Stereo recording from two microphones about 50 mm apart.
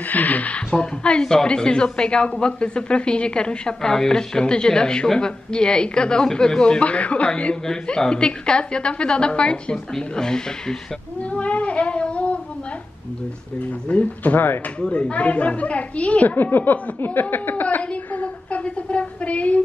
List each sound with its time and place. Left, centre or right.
0.0 s speech: left
0.7 s a woman's voice: centre
11.1 s a sound: left
13.6 s speech: left
14.8 s a woman's voice: left
16.3 s speech: left
18.1 s a sound: left